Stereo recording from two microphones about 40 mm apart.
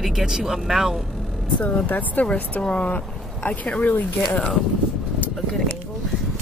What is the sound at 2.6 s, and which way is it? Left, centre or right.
Speech, left.